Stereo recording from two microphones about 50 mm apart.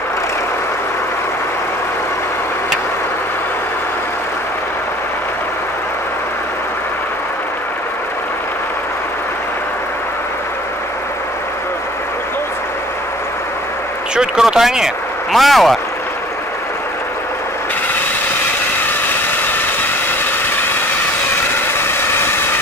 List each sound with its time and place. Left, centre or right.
14.1 s speech: centre
15.3 s speech: centre
21.7 s vehicle: left